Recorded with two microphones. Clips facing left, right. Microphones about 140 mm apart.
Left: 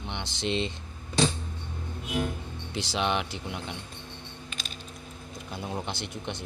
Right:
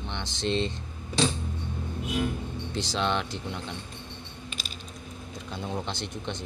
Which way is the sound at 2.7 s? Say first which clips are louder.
Even; 10° left (ahead or behind).